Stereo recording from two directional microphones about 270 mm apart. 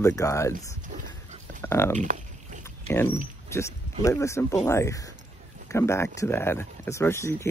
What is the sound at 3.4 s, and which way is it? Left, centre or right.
Speech, centre.